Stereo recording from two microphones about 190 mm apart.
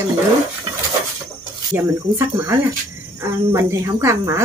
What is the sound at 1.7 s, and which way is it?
A woman's voice, 15° right (ahead or behind).